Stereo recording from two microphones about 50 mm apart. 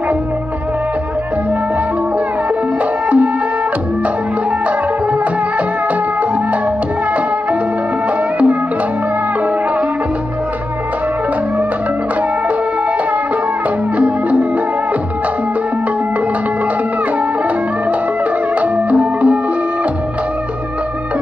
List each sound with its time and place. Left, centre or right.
13.9 s music: right
18.6 s music: right